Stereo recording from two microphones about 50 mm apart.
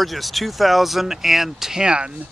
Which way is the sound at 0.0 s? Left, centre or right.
Centre.